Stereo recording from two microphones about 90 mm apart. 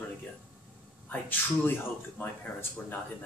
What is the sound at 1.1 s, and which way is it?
Speech, 20° left (ahead or behind).